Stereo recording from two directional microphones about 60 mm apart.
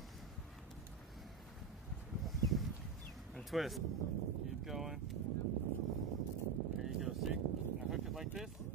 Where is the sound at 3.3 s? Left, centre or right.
Centre.